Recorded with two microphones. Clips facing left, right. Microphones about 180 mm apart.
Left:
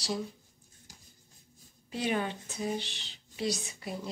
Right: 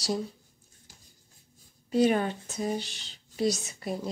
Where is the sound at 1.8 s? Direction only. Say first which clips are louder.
Right 8 dB; 45° right (ahead or behind).